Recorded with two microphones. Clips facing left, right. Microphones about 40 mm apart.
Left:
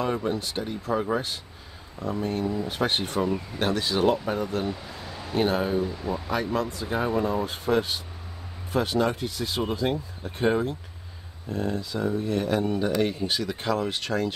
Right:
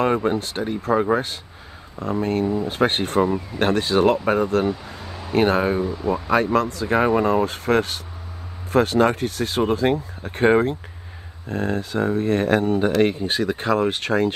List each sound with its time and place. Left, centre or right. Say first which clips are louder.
0.0 s speech: right 7 dB; right
2.4 s speech: right 6 dB; right
2.7 s speech: right 6 dB; right
4.6 s speech: right 7 dB; right
6.3 s speech: right 8 dB; right